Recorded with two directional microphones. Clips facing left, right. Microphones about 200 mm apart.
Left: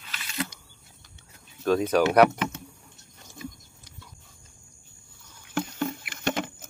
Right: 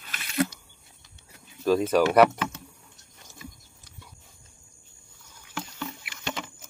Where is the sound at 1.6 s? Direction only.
Centre (ahead or behind).